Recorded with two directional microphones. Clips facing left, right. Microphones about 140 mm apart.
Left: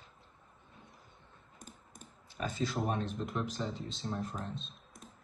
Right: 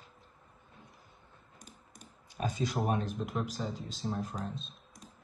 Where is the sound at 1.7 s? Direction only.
Centre (ahead or behind).